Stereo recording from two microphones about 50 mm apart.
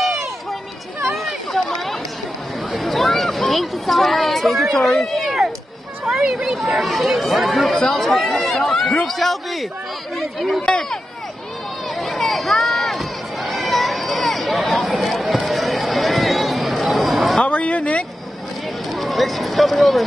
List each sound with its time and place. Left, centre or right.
0.0 s run: centre
2.7 s a sound: centre
4.8 s speech: centre
6.0 s speech: centre
10.6 s speech: centre
12.0 s run: centre
17.5 s a sound: left
18.9 s run: centre